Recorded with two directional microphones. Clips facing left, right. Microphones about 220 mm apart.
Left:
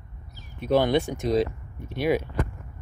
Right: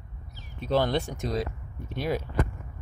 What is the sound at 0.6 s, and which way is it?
Speech, 15° left (ahead or behind).